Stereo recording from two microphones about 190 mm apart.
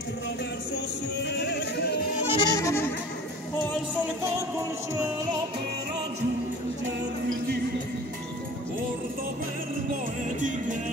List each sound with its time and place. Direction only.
1.3 s music: 60° left (ahead or behind)
2.2 s music: 15° left (ahead or behind)
4.2 s music: 15° right (ahead or behind)